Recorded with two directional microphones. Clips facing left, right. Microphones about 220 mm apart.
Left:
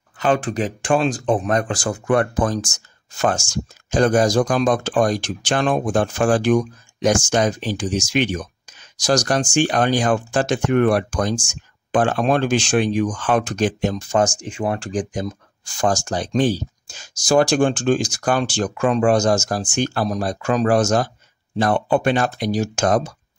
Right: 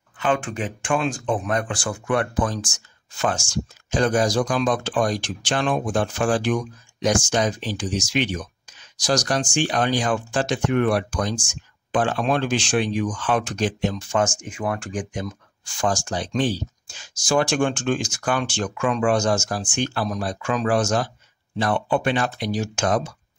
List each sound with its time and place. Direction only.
0.2 s speech: 35° left (ahead or behind)